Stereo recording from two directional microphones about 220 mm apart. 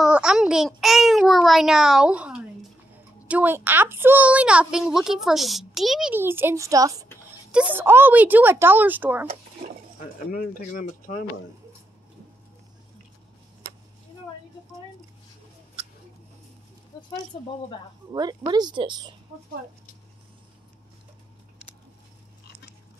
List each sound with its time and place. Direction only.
0.0 s a child's voice: 5° right (ahead or behind)
9.9 s speech: 40° left (ahead or behind)
16.9 s a sound: 20° left (ahead or behind)
17.3 s speech: 25° left (ahead or behind)
18.1 s speech: 20° right (ahead or behind)